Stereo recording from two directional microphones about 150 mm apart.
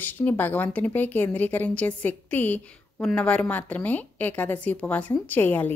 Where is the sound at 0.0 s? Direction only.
10° left (ahead or behind).